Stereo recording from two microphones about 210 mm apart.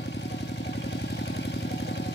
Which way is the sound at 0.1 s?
55° left (ahead or behind).